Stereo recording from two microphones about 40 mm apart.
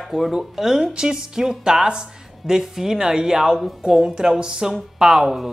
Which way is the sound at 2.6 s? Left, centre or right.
Centre.